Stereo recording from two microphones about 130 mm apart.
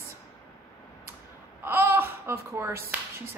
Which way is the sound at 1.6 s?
15° right (ahead or behind).